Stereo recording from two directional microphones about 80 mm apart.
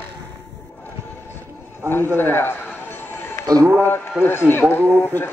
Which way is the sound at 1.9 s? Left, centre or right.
Left.